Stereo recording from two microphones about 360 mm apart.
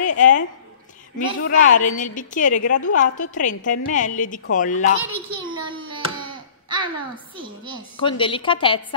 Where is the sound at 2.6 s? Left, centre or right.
Left.